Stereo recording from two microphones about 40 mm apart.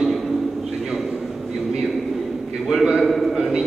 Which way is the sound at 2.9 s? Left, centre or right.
Centre.